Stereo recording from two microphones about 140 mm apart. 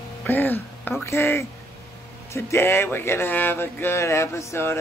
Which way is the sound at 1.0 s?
15° left (ahead or behind).